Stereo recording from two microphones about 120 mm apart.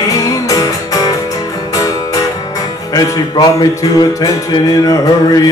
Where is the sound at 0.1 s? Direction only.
30° left (ahead or behind).